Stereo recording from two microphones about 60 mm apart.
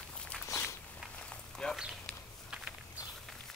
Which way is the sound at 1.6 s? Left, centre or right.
Centre.